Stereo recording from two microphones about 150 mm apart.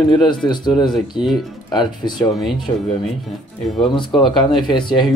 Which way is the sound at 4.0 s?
30° left (ahead or behind).